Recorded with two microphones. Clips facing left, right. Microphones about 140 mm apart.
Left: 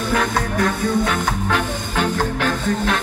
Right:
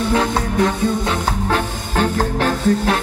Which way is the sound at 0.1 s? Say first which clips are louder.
Left 1 dB; 25° right (ahead or behind).